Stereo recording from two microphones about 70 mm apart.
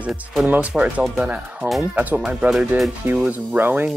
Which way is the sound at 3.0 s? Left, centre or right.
Right.